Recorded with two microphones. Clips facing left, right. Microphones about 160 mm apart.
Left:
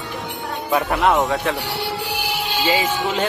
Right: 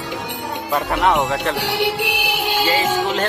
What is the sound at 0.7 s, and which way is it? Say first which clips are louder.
Speech: even; centre (ahead or behind).